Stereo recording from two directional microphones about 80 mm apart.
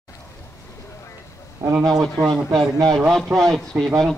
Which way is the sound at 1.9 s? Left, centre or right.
Centre.